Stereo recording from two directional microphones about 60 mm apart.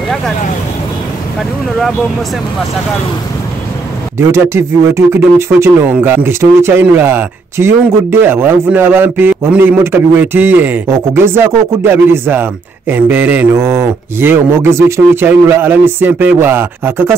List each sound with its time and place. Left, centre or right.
4.2 s speech: right
5.9 s speech: right
6.6 s speech: right
10.9 s speech: right
13.5 s speech: right
14.2 s speech: right
15.2 s speech: right